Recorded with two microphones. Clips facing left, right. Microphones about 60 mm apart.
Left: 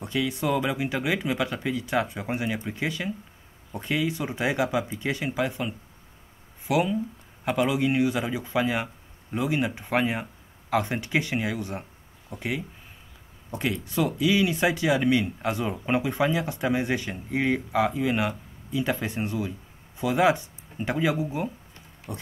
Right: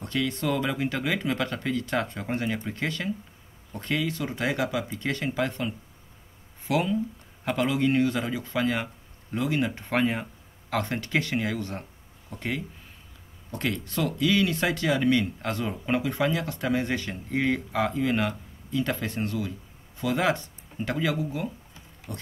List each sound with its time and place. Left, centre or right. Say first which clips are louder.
0.0 s speech: left 1 dB; centre